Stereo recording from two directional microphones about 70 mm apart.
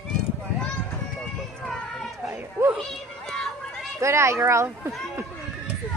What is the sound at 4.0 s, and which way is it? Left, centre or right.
Speech, right.